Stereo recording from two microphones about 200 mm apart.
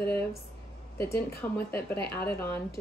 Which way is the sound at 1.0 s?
10° left (ahead or behind).